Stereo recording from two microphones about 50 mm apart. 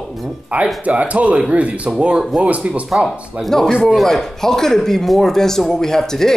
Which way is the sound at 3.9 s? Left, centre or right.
Centre.